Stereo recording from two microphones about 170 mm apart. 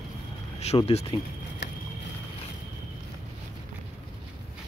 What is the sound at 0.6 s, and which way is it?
Speech, 40° left (ahead or behind).